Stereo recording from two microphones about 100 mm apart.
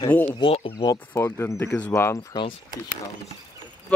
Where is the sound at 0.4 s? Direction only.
70° left (ahead or behind).